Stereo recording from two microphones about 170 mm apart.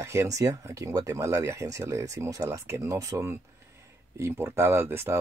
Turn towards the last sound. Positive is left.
turn(degrees=-15)  # may be behind; listen again after turning